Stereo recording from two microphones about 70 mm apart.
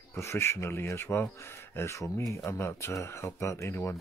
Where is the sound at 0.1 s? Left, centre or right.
Left.